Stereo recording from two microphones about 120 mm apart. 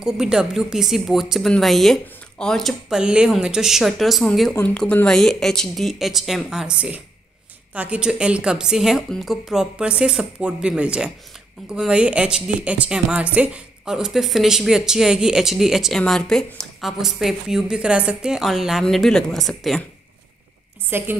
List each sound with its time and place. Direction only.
0.0 s a woman's voice: 5° right (ahead or behind)
20.9 s a woman's voice: 15° right (ahead or behind)